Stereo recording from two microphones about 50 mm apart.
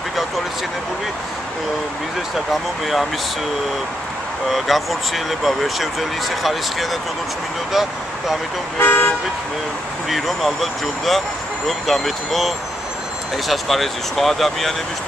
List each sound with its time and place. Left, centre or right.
4.5 s speech: centre
8.7 s speech: left
10.0 s speech: centre